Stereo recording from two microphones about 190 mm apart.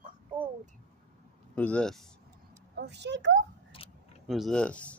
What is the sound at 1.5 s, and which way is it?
Speech, 5° left (ahead or behind).